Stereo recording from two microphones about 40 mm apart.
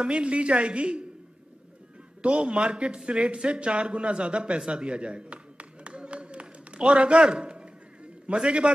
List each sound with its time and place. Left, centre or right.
0.0 s a woman's voice: right
2.2 s a woman's voice: right
6.8 s a sound: right